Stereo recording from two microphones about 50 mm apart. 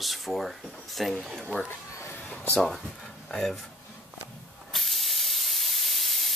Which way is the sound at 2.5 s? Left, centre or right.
Centre.